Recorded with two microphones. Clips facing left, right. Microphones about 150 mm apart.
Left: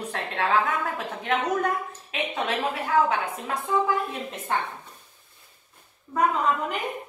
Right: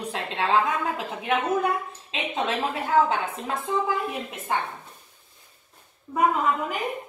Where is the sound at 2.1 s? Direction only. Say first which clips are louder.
Right 1 dB; 25° right (ahead or behind).